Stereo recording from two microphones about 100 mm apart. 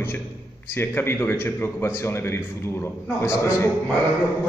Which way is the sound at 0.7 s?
25° left (ahead or behind).